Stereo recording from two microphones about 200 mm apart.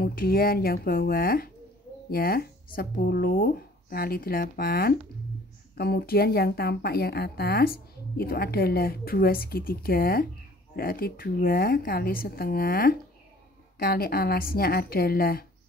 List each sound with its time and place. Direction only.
0.0 s speech: 50° left (ahead or behind)